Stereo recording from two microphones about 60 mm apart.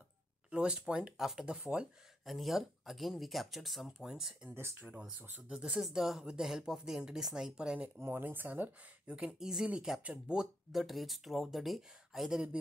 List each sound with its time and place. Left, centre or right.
0.5 s speech: centre
1.1 s speech: centre
1.4 s speech: centre
2.2 s speech: centre
4.7 s speech: right
5.5 s speech: centre
8.0 s speech: right
9.2 s speech: centre